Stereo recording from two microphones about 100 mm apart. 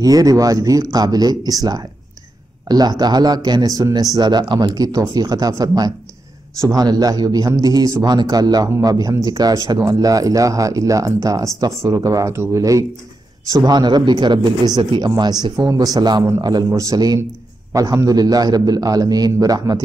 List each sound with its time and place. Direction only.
0.0 s speech: 40° right (ahead or behind); by 15.0 s 55° right (ahead or behind)
15.0 s speech: 45° right (ahead or behind)